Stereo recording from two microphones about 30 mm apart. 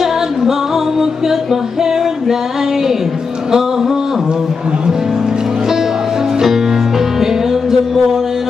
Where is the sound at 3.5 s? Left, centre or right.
Centre.